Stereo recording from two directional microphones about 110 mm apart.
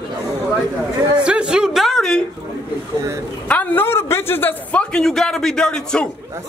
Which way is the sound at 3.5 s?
15° left (ahead or behind).